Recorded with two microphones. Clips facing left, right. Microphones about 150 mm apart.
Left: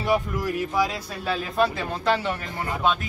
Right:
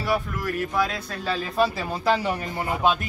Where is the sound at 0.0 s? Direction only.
15° left (ahead or behind).